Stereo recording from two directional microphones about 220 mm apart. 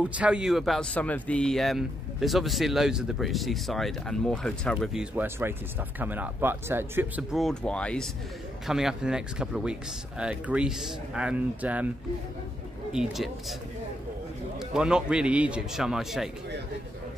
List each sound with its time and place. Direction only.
0.0 s speech: 5° right (ahead or behind)
12.9 s speech: centre (ahead or behind)
14.6 s speech: 5° right (ahead or behind)